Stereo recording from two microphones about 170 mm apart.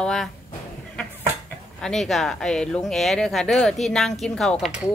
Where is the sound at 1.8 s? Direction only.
Centre (ahead or behind).